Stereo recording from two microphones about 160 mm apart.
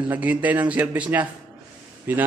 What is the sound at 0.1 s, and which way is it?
Speech, 10° right (ahead or behind).